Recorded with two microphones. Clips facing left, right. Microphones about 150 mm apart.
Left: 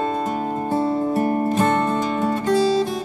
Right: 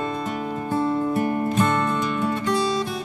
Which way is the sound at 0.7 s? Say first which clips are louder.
Left 1 dB; 30° left (ahead or behind).